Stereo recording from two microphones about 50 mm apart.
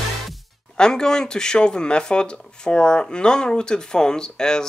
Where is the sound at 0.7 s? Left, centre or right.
Centre.